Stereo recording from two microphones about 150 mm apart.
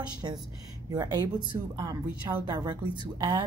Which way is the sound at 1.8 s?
25° right (ahead or behind).